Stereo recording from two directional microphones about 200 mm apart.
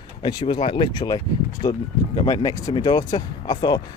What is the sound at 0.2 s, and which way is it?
Speech, 20° left (ahead or behind).